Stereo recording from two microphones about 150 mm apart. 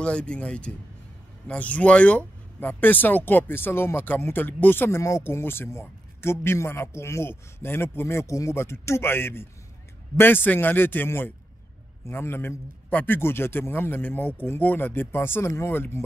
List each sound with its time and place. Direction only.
0.0 s speech: 5° left (ahead or behind)